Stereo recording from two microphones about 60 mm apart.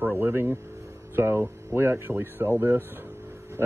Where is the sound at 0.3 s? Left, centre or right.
Right.